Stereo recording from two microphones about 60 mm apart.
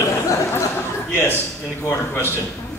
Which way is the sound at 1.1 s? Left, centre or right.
Left.